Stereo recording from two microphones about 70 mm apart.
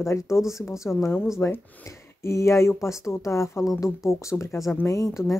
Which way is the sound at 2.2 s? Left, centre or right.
Left.